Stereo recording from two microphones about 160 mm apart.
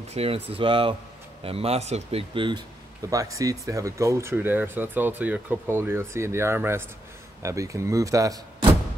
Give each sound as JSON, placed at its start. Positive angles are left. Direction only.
{"t": 0.1, "sound": "speech", "side_deg": -35}